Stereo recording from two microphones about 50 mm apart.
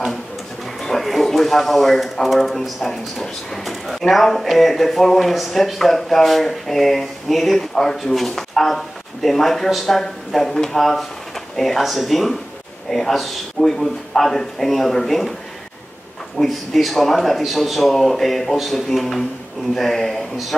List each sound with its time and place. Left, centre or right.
0.8 s speech: centre
16.3 s speech: centre